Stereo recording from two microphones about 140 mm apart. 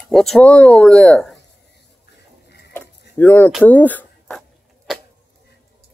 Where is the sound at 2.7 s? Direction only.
15° left (ahead or behind).